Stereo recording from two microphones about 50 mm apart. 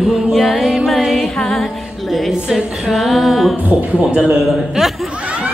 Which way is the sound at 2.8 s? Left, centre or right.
Centre.